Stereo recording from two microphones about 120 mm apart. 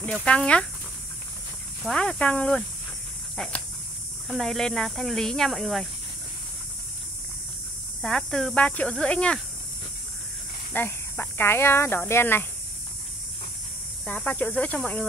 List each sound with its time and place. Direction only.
0.0 s speech: 10° left (ahead or behind)
1.8 s speech: 5° left (ahead or behind)
4.3 s speech: centre (ahead or behind)
8.0 s speech: 5° left (ahead or behind)
10.7 s speech: 15° left (ahead or behind)
14.0 s speech: 15° left (ahead or behind)